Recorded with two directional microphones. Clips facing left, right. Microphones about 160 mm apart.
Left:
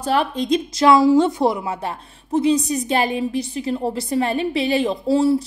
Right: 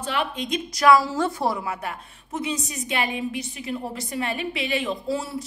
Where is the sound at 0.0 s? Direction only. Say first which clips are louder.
Left 7 dB; 40° left (ahead or behind).